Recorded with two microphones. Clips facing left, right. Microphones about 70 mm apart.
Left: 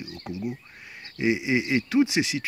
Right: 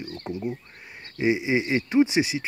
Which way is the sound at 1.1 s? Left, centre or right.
Right.